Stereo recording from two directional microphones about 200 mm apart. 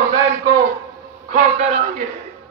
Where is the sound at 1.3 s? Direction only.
35° right (ahead or behind).